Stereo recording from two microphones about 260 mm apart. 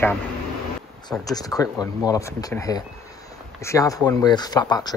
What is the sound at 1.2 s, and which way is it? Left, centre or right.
A man's voice, centre.